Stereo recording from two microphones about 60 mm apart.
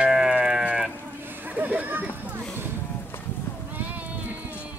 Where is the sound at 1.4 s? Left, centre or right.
Right.